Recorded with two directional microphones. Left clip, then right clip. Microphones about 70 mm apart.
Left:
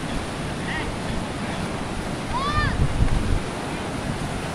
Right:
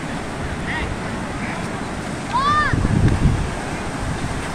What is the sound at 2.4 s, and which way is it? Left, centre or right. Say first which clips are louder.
Boat: right 8 dB; right.